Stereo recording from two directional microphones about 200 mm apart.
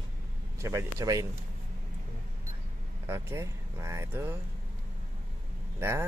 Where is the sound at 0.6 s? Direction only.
15° right (ahead or behind).